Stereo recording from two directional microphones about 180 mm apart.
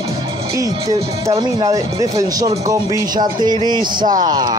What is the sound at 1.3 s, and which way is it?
Speech, 20° right (ahead or behind).